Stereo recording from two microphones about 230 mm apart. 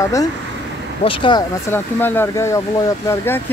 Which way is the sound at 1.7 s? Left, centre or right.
Centre.